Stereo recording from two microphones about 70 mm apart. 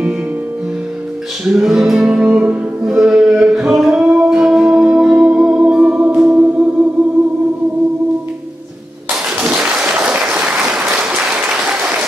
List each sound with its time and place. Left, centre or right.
1.4 s music: centre; by 6.9 s right
9.6 s applause: centre